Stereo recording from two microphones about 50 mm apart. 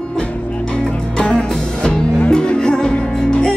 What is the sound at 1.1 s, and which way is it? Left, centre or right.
Music, centre.